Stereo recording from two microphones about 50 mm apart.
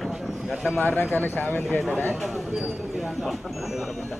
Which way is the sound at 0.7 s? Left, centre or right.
Left.